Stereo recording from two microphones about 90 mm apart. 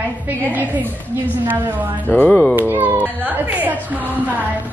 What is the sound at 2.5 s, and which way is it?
Speech, 20° right (ahead or behind).